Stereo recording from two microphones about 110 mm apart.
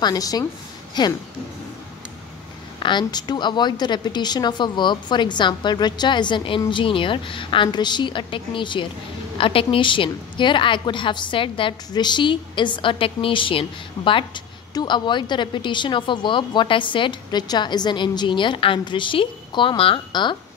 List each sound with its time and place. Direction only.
0.0 s a woman's voice: 35° left (ahead or behind)
2.8 s a woman's voice: 45° left (ahead or behind)